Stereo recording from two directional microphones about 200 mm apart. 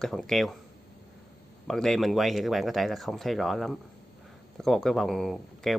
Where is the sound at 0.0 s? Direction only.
Centre (ahead or behind).